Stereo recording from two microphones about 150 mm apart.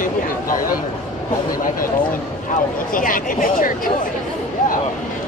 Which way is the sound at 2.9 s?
70° left (ahead or behind).